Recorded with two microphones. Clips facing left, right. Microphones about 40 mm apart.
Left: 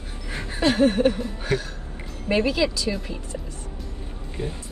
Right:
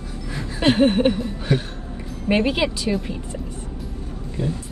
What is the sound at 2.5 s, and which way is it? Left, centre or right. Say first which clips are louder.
Speech: right 2 dB; right.